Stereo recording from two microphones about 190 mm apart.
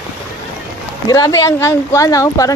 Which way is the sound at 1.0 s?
20° left (ahead or behind).